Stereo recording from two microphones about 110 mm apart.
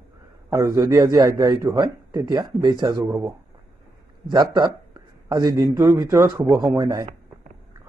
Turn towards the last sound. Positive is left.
turn(degrees=-40)  # may be behind; listen again after turning